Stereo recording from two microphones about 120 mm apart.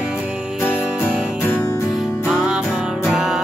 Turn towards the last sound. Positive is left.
turn(degrees=-5)  # may be behind; listen again after turning